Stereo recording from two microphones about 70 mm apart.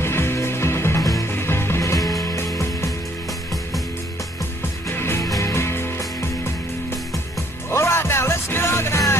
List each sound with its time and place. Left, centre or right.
0.0 s music: left
4.9 s music: left
7.7 s music: left